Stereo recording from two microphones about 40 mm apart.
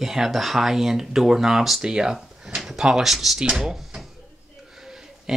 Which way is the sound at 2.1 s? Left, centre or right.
Centre.